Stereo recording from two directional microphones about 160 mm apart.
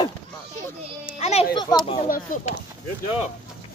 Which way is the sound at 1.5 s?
25° left (ahead or behind).